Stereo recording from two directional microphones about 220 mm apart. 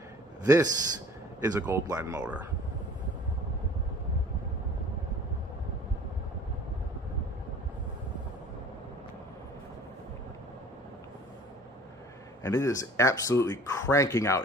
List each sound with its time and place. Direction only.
0.4 s a man's voice: 15° right (ahead or behind)
12.4 s speech: 15° left (ahead or behind)